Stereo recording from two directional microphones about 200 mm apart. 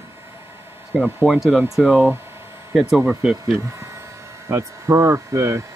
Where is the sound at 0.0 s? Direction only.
10° right (ahead or behind).